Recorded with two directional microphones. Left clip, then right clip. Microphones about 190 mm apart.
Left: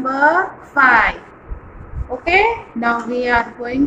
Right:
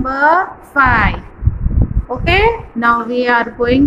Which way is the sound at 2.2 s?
30° right (ahead or behind).